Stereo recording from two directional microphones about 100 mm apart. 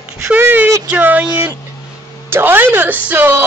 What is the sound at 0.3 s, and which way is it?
A woman's voice, 20° right (ahead or behind).